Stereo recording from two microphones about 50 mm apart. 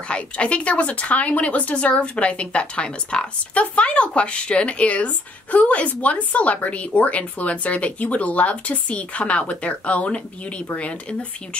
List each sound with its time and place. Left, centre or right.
0.1 s speech: left